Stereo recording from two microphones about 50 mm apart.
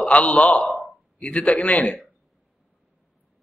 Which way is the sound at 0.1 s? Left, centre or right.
Left.